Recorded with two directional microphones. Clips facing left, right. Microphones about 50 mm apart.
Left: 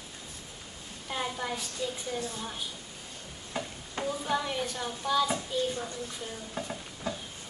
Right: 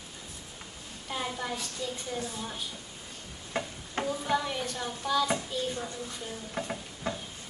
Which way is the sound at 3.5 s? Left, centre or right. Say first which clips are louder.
Right 2 dB; right.